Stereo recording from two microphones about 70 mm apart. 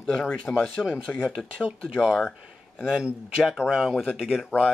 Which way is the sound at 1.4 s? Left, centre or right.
Centre.